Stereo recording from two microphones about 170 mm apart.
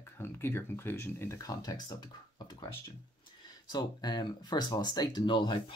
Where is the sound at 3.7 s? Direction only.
25° left (ahead or behind).